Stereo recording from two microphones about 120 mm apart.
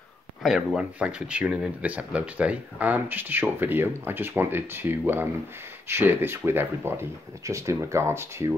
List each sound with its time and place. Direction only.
0.4 s speech: centre (ahead or behind); by 8.5 s 20° right (ahead or behind)